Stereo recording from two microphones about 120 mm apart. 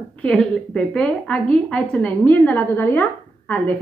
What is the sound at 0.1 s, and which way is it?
A woman's voice, 10° left (ahead or behind).